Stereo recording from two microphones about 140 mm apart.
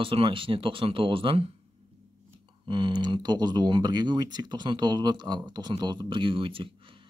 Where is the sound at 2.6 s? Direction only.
35° right (ahead or behind).